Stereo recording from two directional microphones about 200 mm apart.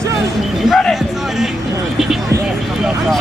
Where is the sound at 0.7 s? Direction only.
Centre (ahead or behind).